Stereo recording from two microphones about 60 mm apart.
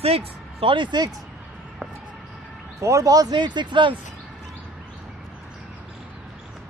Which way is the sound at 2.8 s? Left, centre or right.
Right.